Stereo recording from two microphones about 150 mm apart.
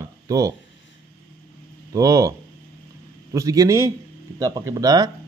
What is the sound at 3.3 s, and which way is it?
Speech, 20° right (ahead or behind).